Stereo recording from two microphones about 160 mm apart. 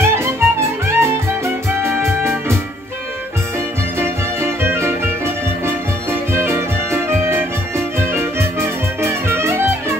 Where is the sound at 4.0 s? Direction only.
15° right (ahead or behind).